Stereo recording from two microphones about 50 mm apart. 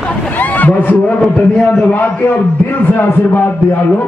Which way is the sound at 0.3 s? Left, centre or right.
Left.